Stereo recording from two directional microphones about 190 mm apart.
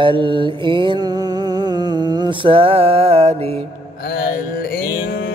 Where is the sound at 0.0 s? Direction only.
25° right (ahead or behind).